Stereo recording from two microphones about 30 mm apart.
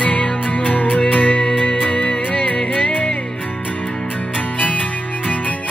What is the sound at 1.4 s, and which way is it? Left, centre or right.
Music, left.